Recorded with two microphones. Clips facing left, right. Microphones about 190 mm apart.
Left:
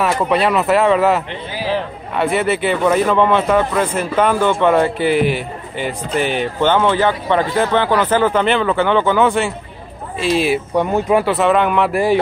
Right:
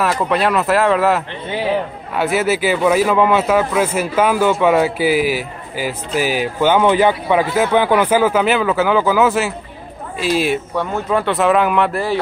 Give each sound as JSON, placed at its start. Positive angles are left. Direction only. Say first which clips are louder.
{"t": 0.0, "sound": "a man's voice", "louder": "left 1 dB", "side_deg": 0}
{"t": 10.7, "sound": "speech", "louder": "left 4 dB", "side_deg": 15}
{"t": 11.2, "sound": "a man's voice", "louder": "even", "side_deg": 0}
{"t": 11.9, "sound": "speech", "louder": "left 5 dB", "side_deg": 15}